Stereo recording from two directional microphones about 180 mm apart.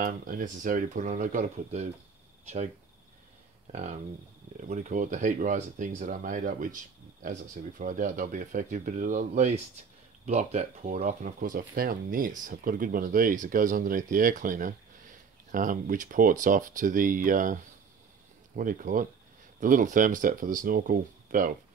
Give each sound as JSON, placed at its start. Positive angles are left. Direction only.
{"t": 0.0, "sound": "speech", "side_deg": -50}
{"t": 4.6, "sound": "speech", "side_deg": -45}
{"t": 7.8, "sound": "speech", "side_deg": -45}